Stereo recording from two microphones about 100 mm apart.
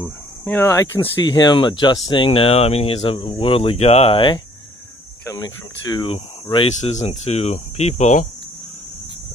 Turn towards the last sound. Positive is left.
turn(degrees=90)